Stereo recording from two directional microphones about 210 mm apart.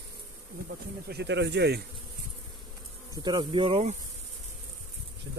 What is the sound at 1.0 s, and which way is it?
Speech, 55° right (ahead or behind).